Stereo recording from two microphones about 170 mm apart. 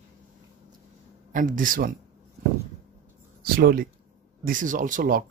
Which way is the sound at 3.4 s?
60° right (ahead or behind).